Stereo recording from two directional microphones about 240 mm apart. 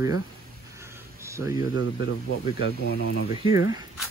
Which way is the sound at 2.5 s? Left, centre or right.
Left.